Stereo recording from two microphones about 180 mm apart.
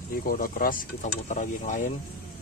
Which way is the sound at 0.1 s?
50° left (ahead or behind).